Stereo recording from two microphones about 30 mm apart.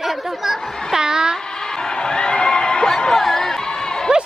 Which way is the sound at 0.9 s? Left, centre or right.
Right.